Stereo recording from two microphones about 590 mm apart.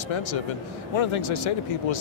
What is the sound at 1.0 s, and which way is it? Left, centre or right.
Speech, left.